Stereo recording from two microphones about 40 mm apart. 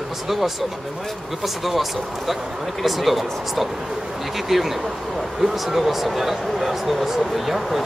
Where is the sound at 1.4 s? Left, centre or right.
Centre.